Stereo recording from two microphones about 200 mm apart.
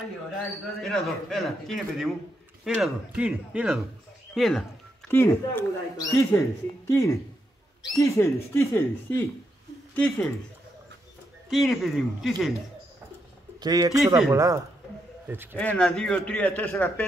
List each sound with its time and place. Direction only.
0.8 s speech: centre (ahead or behind)
11.5 s speech: centre (ahead or behind)
13.6 s a man's voice: 20° right (ahead or behind)
15.5 s speech: 5° left (ahead or behind)